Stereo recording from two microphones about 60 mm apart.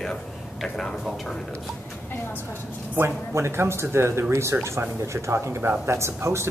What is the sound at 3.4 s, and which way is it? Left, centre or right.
Speech, right.